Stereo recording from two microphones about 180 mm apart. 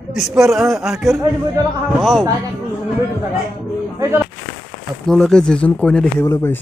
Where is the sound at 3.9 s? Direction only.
15° right (ahead or behind).